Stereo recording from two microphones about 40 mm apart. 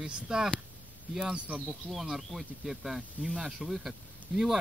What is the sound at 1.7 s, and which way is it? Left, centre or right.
Speech, centre.